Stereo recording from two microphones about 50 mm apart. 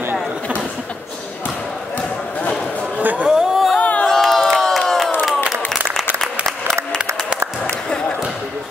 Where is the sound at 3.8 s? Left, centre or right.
Left.